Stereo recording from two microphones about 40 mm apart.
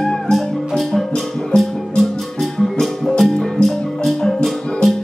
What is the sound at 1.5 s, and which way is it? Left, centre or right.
Music, left.